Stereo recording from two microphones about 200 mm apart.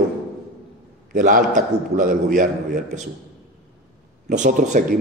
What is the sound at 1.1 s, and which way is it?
A man's voice, 40° right (ahead or behind).